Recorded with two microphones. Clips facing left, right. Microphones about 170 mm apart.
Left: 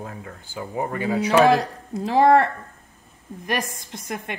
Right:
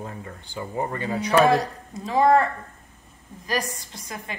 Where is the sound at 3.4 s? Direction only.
60° left (ahead or behind).